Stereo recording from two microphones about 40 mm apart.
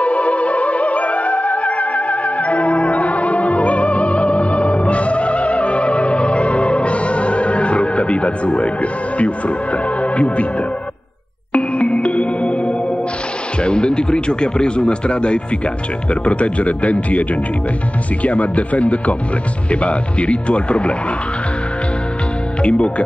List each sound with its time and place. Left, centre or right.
0.0 s music: left
11.5 s music: left
13.6 s speech: left
22.6 s speech: left